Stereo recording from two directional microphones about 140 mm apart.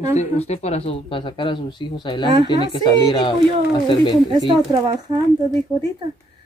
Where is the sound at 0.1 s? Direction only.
55° left (ahead or behind); by 4.2 s 35° left (ahead or behind).